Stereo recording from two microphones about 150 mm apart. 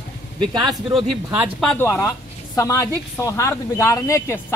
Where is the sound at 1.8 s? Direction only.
15° left (ahead or behind).